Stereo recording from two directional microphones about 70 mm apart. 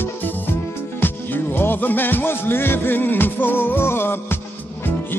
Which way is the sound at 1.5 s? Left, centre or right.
Left.